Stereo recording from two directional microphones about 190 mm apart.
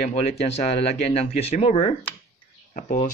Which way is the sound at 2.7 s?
45° left (ahead or behind).